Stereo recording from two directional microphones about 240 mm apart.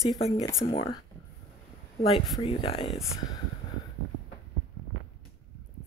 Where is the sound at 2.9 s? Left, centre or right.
Centre.